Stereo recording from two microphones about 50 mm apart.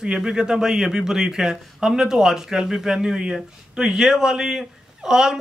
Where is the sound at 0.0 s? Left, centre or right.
Centre.